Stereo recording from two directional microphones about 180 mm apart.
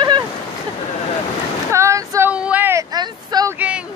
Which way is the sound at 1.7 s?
15° right (ahead or behind).